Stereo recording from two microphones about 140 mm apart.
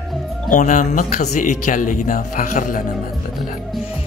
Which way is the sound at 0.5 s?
65° left (ahead or behind).